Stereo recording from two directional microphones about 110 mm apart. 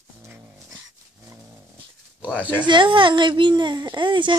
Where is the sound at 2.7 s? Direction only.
45° right (ahead or behind).